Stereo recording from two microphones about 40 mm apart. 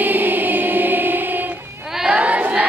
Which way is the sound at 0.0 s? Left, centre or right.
Right.